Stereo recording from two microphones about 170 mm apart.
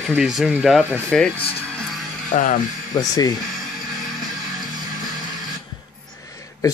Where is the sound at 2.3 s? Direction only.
40° left (ahead or behind).